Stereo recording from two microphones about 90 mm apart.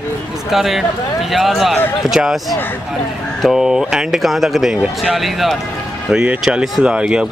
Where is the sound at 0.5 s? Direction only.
5° right (ahead or behind).